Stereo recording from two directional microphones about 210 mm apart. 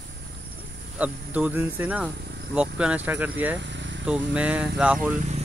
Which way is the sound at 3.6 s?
60° right (ahead or behind).